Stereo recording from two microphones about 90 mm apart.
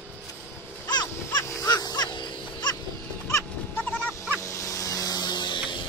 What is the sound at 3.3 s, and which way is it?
Goat, 20° left (ahead or behind).